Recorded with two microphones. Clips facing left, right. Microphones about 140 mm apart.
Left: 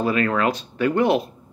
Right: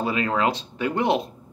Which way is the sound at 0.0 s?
20° right (ahead or behind).